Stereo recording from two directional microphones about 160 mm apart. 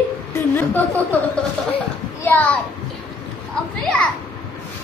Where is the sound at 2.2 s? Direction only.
10° left (ahead or behind).